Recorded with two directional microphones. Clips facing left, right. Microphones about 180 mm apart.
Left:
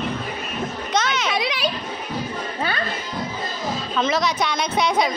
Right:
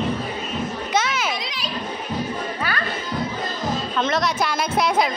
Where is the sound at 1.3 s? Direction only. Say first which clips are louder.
Left 6 dB; 65° left (ahead or behind).